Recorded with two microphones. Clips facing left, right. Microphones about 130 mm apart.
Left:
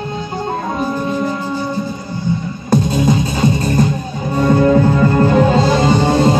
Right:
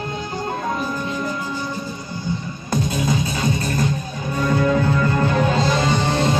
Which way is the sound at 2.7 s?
30° left (ahead or behind).